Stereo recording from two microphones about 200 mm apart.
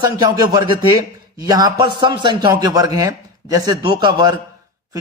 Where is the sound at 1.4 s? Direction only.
20° right (ahead or behind).